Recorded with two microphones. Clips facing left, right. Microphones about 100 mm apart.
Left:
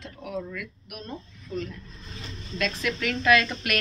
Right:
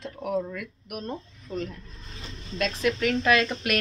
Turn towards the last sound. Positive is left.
turn(degrees=-30)  # may be behind; listen again after turning